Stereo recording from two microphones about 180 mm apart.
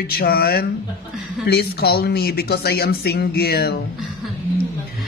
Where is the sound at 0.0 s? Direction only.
55° left (ahead or behind).